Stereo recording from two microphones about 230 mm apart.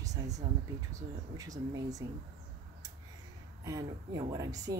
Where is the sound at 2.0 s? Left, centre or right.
Right.